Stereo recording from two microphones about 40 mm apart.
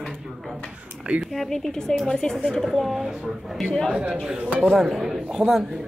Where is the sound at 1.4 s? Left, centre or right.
Centre.